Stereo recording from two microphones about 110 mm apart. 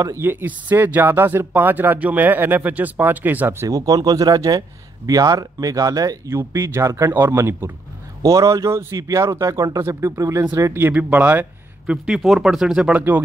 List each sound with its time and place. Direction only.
0.0 s speech: 25° right (ahead or behind)
10.7 s speech: 20° right (ahead or behind)